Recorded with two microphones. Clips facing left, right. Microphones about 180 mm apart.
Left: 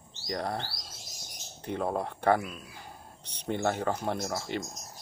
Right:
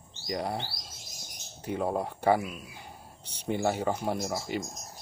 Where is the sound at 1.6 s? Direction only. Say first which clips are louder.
Right 1 dB; 5° right (ahead or behind).